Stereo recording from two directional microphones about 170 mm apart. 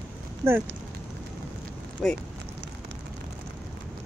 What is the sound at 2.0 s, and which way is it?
Speech, 5° left (ahead or behind).